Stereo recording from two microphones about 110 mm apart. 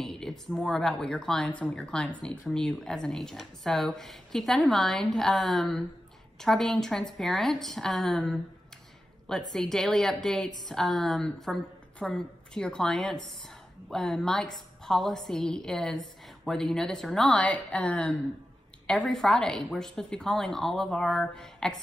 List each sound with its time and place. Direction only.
0.0 s speech: 5° left (ahead or behind)